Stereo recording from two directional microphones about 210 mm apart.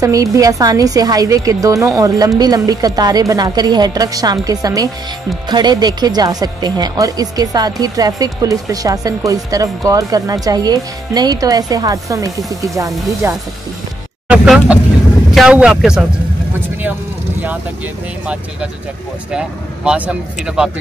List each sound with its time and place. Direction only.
0.0 s speech: 15° right (ahead or behind)
18.2 s speech: 5° right (ahead or behind)